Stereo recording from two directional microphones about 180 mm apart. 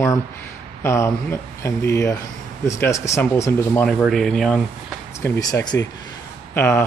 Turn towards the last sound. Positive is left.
turn(degrees=10)  # may be behind; listen again after turning